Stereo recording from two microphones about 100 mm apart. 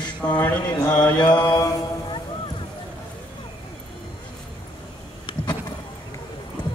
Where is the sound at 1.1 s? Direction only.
45° left (ahead or behind).